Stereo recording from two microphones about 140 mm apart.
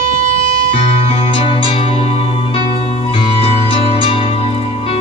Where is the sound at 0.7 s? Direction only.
45° left (ahead or behind).